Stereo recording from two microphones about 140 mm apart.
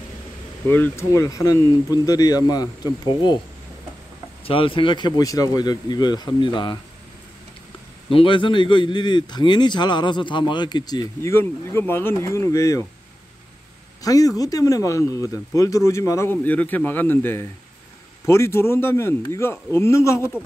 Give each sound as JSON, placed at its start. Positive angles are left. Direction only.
{"t": 0.7, "sound": "speech", "side_deg": 15}
{"t": 4.5, "sound": "a man's voice", "side_deg": 40}
{"t": 8.1, "sound": "a man's voice", "side_deg": 40}
{"t": 11.3, "sound": "speech", "side_deg": 15}
{"t": 14.0, "sound": "speech", "side_deg": 25}